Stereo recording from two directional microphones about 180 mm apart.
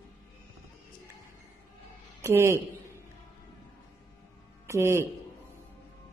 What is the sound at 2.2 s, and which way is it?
Speech, 15° right (ahead or behind).